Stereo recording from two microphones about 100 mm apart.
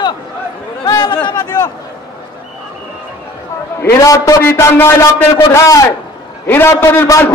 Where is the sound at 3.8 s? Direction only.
25° left (ahead or behind).